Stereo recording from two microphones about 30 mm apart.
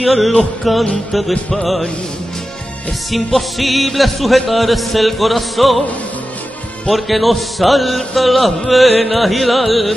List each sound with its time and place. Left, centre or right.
0.0 s music: centre
3.1 s music: centre
6.9 s music: centre